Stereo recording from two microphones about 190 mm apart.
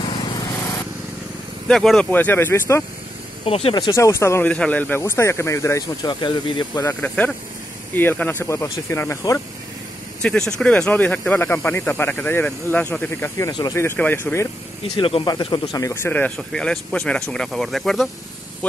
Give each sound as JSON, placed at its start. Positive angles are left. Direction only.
{"t": 0.0, "sound": "lawn mower", "side_deg": 25}
{"t": 1.7, "sound": "speech", "side_deg": 0}
{"t": 3.4, "sound": "speech", "side_deg": 30}
{"t": 10.2, "sound": "speech", "side_deg": 5}
{"t": 15.0, "sound": "speech", "side_deg": 25}
{"t": 18.6, "sound": "a sound", "side_deg": 5}